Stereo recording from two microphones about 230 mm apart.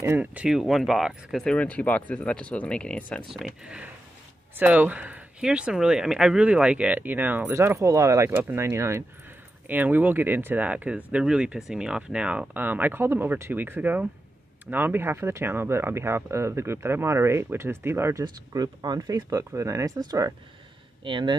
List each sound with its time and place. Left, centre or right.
0.0 s speech: centre